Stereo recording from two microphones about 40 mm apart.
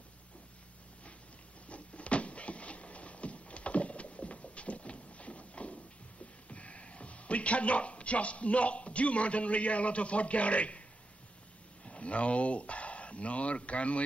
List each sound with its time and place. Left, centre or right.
1.7 s a sound: left
6.5 s a man's voice: left
11.8 s speech: left